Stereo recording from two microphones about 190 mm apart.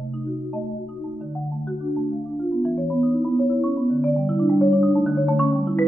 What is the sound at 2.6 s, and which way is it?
Music, centre (ahead or behind).